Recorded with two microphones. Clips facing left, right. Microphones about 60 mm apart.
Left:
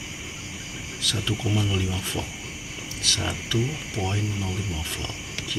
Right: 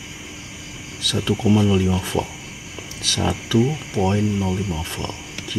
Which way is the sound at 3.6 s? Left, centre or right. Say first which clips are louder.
Right 10 dB; right.